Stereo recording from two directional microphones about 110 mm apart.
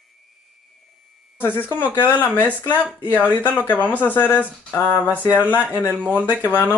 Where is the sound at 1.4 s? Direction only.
20° left (ahead or behind).